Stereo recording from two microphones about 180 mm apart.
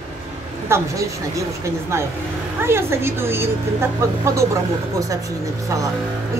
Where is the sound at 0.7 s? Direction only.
15° right (ahead or behind).